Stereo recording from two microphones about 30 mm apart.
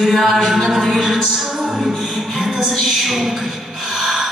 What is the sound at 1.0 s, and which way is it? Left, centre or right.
Music, centre.